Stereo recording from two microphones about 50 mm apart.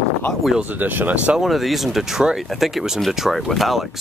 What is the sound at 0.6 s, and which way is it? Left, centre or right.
Speech, right.